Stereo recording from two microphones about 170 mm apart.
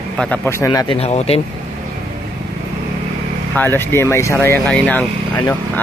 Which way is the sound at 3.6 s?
15° left (ahead or behind).